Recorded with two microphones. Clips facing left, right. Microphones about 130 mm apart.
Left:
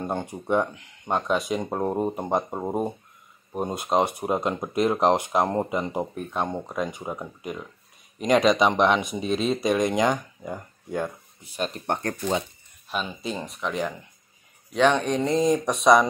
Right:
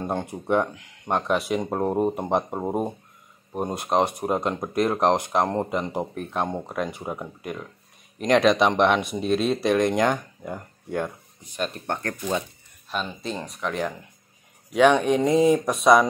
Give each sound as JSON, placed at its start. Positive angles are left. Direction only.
{"t": 0.0, "sound": "speech", "side_deg": 0}
{"t": 11.8, "sound": "speech", "side_deg": 20}
{"t": 12.9, "sound": "speech", "side_deg": 5}
{"t": 14.7, "sound": "speech", "side_deg": -10}